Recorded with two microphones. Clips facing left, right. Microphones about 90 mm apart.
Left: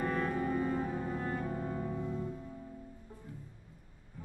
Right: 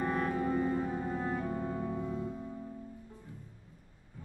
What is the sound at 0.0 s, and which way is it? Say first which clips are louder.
Music: right 1 dB; 15° right (ahead or behind).